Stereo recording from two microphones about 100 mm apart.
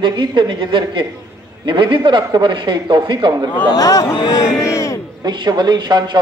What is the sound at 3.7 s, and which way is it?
Speech, 40° left (ahead or behind).